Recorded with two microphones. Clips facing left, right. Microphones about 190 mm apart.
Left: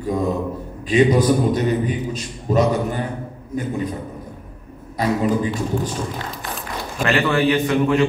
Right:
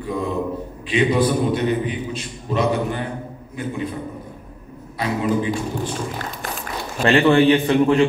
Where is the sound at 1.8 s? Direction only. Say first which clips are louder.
Left 2 dB; 40° left (ahead or behind).